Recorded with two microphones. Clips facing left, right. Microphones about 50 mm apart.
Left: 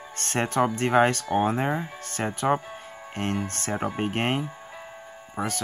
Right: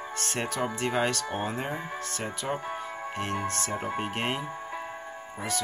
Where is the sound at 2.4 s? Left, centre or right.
Left.